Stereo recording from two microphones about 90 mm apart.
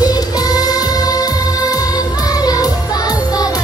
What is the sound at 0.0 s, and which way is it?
Music, 45° left (ahead or behind).